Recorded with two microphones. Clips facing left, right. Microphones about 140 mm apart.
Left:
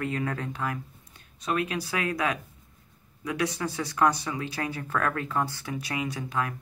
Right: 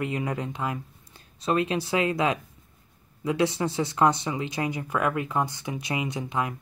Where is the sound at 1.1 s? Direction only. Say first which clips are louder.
Right 4 dB; 30° right (ahead or behind).